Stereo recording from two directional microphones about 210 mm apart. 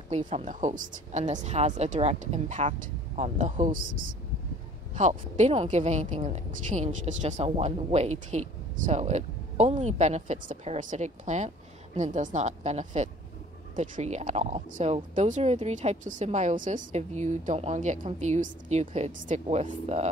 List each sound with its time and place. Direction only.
0.1 s a woman's voice: 30° right (ahead or behind)